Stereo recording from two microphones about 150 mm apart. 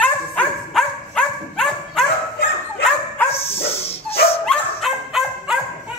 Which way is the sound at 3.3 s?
40° left (ahead or behind).